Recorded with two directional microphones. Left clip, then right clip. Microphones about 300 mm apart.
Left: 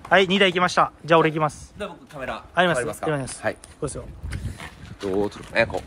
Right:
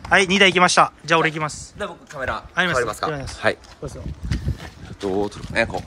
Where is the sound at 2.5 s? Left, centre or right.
Centre.